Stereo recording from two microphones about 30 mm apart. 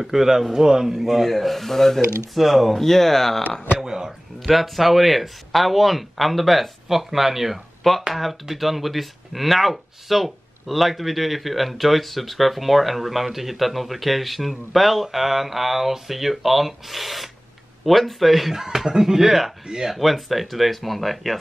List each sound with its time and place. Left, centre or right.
0.0 s speech: centre
0.9 s speech: centre
2.3 s speech: centre
2.8 s speech: centre
3.8 s speech: right
4.4 s speech: centre
18.5 s speech: centre
19.6 s speech: right
19.9 s speech: centre